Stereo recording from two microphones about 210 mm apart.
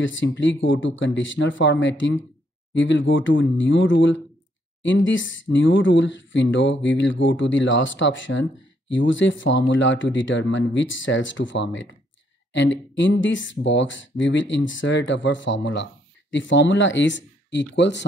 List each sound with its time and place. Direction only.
0.0 s speech: 60° left (ahead or behind)